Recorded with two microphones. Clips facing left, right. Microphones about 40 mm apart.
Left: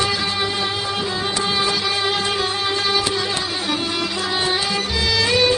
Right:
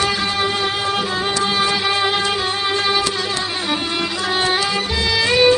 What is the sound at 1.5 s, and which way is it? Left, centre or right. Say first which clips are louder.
Music: right 3 dB; centre.